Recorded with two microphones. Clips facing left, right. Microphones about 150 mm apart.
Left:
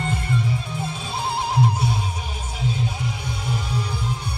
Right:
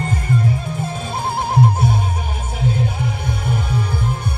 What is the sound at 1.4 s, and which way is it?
Music, 50° right (ahead or behind).